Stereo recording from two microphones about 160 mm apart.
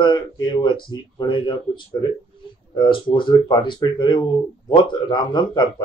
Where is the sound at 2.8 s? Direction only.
30° left (ahead or behind).